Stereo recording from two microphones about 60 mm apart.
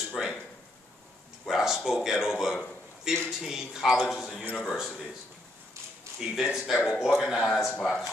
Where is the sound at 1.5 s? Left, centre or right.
Centre.